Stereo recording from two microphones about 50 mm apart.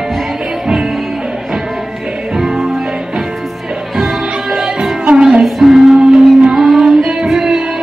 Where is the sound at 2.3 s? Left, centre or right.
Centre.